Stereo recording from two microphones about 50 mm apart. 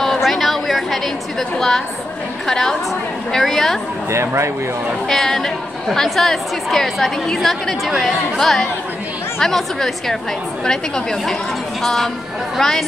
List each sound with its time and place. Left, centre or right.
0.2 s chatter: centre
2.4 s a woman's voice: centre
4.1 s speech: right
5.0 s a woman's voice: centre